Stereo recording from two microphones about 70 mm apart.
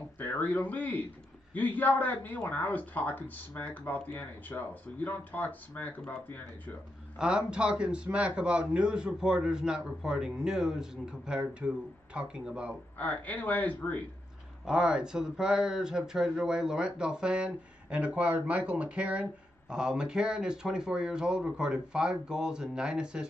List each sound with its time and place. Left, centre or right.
0.2 s a man's voice: left
7.2 s speech: centre
12.9 s a man's voice: left
14.6 s speech: centre